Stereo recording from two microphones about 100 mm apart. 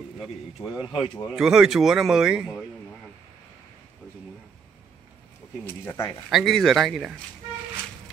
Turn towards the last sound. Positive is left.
turn(degrees=0)  # may be behind; listen again after turning